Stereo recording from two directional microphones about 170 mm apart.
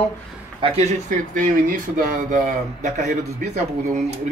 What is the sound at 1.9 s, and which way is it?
Speech, 50° right (ahead or behind).